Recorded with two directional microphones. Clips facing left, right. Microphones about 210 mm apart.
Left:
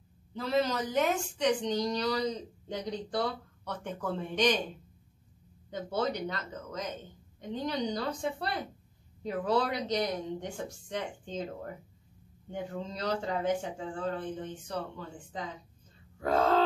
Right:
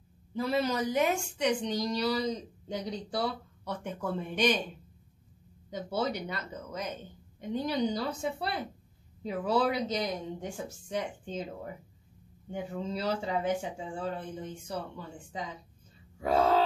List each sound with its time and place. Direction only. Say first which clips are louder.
0.3 s a woman's voice: even; 10° right (ahead or behind)
5.7 s a woman's voice: even; 10° right (ahead or behind)